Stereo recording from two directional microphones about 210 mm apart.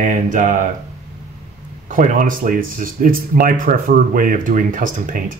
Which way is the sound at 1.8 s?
40° right (ahead or behind).